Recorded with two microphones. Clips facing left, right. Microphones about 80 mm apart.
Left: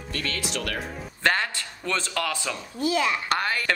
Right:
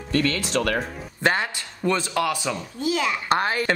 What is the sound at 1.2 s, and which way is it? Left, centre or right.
Speech, centre.